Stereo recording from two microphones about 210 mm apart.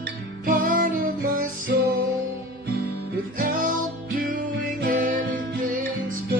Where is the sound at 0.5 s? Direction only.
40° right (ahead or behind).